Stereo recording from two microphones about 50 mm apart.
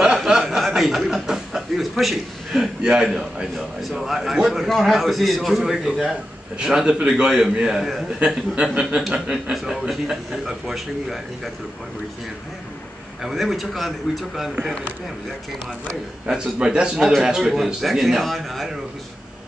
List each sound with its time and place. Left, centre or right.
0.0 s chuckle: centre
2.8 s a man's voice: centre
13.2 s a man's voice: centre
14.5 s speech: right
16.3 s a man's voice: centre